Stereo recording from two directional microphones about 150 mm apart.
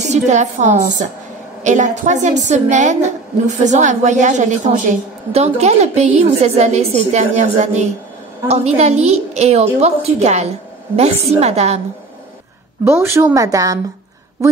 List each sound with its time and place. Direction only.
0.1 s a woman's voice: 50° right (ahead or behind)
12.8 s a woman's voice: 15° right (ahead or behind)